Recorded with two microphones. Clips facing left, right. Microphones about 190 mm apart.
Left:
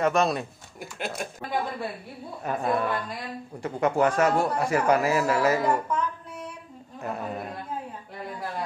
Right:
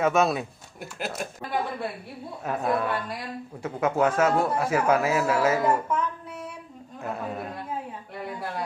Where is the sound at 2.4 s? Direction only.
Centre (ahead or behind).